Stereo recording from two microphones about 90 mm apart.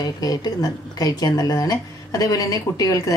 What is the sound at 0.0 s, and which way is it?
Speech, 50° left (ahead or behind).